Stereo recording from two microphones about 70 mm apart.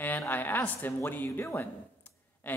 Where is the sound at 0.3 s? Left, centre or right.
Left.